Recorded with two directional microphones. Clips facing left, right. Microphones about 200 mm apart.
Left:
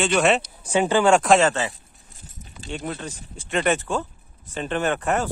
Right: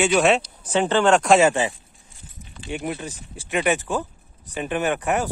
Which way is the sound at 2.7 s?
15° right (ahead or behind).